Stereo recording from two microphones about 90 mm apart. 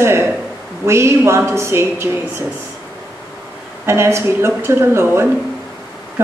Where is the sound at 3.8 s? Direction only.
30° right (ahead or behind).